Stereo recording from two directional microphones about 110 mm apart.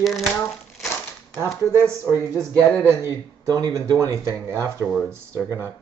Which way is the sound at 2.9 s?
30° right (ahead or behind).